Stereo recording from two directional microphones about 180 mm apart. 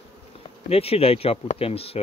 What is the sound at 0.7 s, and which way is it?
Speech, 35° left (ahead or behind).